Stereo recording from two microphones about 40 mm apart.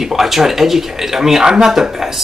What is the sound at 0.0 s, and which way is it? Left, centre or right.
Speech, centre.